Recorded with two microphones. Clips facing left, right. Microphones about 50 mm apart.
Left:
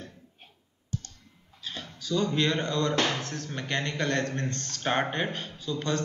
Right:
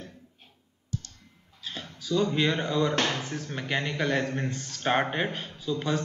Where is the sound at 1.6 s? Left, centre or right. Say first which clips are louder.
Even; centre.